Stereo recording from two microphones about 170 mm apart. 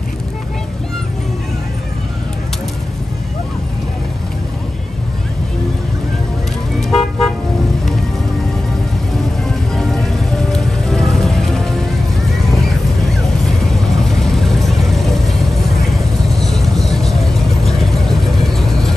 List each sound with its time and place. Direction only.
6.8 s toot: centre (ahead or behind)
9.5 s music: centre (ahead or behind)
12.6 s vehicle: centre (ahead or behind)